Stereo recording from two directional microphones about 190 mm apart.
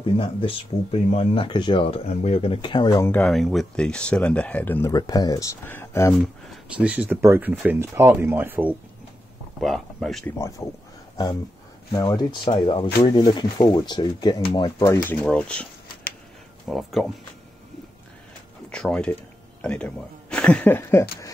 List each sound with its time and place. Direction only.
0.2 s speech: 30° left (ahead or behind)
3.1 s speech: 5° left (ahead or behind)
6.8 s speech: 5° right (ahead or behind)
9.6 s speech: centre (ahead or behind)
10.6 s speech: 15° left (ahead or behind)
11.9 s speech: 20° left (ahead or behind)
15.0 s speech: 5° left (ahead or behind)
18.7 s speech: 5° left (ahead or behind)